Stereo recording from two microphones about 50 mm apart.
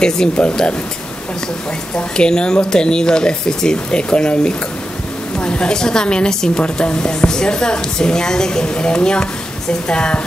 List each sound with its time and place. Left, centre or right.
0.0 s a woman's voice: centre
2.0 s a woman's voice: centre